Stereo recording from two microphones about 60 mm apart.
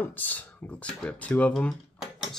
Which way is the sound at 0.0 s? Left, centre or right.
Left.